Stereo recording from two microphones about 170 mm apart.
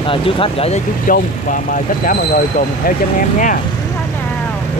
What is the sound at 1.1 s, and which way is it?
Speech, 50° left (ahead or behind).